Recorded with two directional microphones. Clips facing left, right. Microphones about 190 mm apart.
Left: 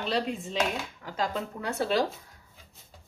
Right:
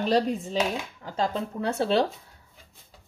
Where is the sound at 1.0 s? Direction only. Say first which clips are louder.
Right 4 dB; 30° right (ahead or behind).